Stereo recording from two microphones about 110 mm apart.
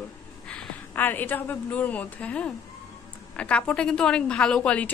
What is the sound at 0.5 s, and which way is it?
A woman's voice, 15° left (ahead or behind).